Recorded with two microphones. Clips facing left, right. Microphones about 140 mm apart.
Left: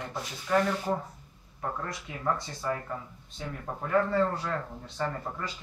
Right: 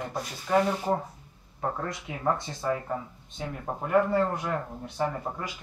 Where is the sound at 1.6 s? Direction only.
35° right (ahead or behind); by 5.3 s 15° right (ahead or behind).